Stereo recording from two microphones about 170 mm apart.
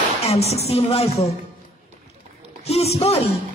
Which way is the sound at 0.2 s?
40° left (ahead or behind).